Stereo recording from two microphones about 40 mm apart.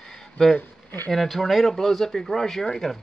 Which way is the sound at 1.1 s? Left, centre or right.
Centre.